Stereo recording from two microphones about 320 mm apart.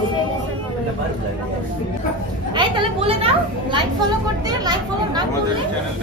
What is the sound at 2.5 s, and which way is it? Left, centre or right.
Speech, centre.